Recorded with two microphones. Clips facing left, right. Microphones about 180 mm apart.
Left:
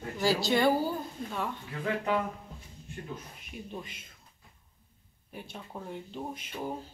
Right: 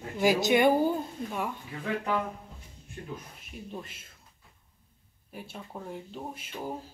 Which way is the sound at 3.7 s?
5° right (ahead or behind).